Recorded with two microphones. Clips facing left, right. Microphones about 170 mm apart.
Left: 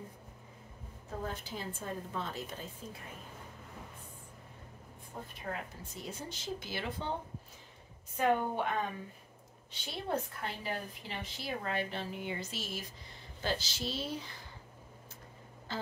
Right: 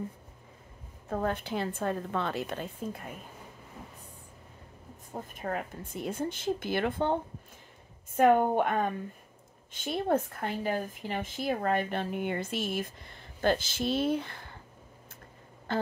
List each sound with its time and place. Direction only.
1.1 s a woman's voice: 65° right (ahead or behind)
5.1 s speech: 50° right (ahead or behind)
15.7 s a sound: 55° right (ahead or behind)